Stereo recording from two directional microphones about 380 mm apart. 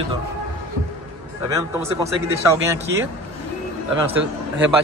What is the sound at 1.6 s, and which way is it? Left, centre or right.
Speech, centre.